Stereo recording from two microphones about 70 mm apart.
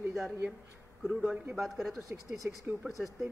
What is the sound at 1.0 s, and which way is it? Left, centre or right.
A man's voice, centre.